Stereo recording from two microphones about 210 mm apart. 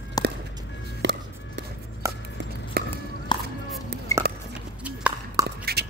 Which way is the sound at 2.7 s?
45° right (ahead or behind).